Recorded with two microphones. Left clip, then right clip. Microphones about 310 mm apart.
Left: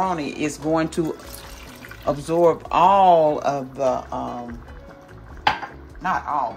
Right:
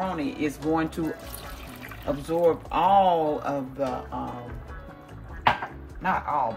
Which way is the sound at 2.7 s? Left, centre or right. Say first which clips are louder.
Left 7 dB; left.